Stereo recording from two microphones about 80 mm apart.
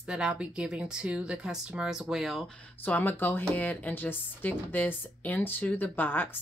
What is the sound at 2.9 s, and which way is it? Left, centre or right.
Speech, left.